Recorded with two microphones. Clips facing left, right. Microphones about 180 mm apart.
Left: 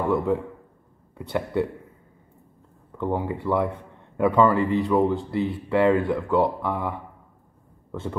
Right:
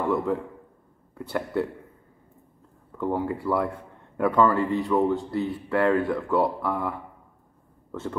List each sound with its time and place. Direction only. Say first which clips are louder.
0.1 s speech: left 2 dB; centre (ahead or behind)
3.0 s a man's voice: even; centre (ahead or behind)